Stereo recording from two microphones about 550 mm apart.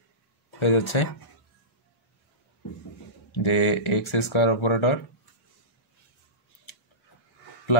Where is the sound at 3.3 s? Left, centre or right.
Left.